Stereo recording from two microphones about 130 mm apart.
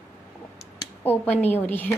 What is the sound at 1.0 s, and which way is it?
Speech, 10° left (ahead or behind).